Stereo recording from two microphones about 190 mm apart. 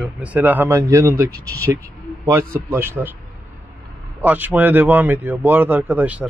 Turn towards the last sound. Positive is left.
turn(degrees=-5)  # may be behind; listen again after turning